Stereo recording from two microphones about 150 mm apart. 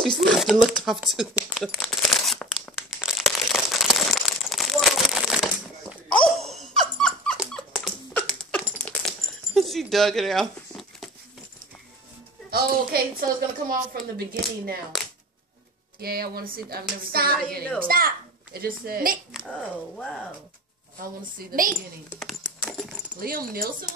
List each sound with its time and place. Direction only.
0.2 s speech: centre (ahead or behind)
1.3 s crumpling: centre (ahead or behind)
6.0 s dog: 5° left (ahead or behind)
8.7 s coin: 5° left (ahead or behind)
12.4 s a woman's voice: 90° right
16.0 s a woman's voice: 90° right
19.3 s speech: 5° left (ahead or behind)
21.2 s speech: 70° right (ahead or behind)
22.2 s a sound: centre (ahead or behind)
23.2 s speech: 75° right (ahead or behind)